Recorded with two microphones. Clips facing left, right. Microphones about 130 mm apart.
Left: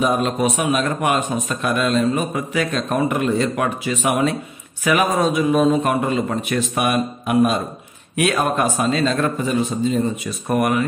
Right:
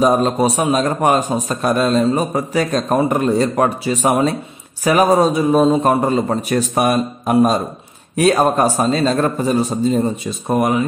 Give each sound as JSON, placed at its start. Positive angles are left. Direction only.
{"t": 0.0, "sound": "a man's voice", "side_deg": -35}
{"t": 10.2, "sound": "speech", "side_deg": -20}